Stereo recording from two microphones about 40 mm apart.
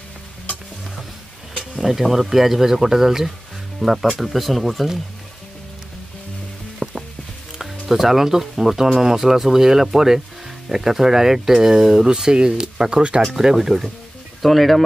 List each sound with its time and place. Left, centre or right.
1.5 s speech: centre
6.8 s music: right
7.8 s speech: centre
13.2 s speech: centre
14.4 s speech: centre